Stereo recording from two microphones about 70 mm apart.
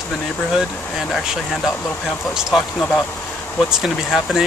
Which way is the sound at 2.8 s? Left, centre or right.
Left.